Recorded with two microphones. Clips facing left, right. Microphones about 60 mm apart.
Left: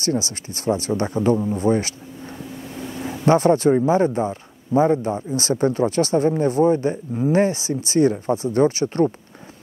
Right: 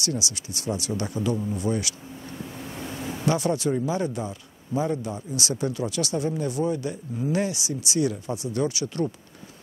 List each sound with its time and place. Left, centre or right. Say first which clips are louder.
0.0 s speech: left 7 dB; left
3.1 s speech: left 9 dB; left